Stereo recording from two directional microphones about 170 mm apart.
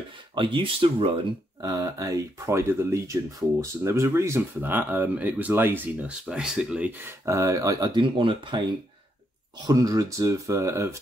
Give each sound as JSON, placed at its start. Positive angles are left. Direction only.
{"t": 0.3, "sound": "speech", "side_deg": -30}
{"t": 1.6, "sound": "speech", "side_deg": -20}
{"t": 9.7, "sound": "speech", "side_deg": -20}